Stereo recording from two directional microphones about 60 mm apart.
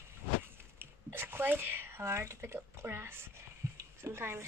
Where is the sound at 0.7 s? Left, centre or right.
Right.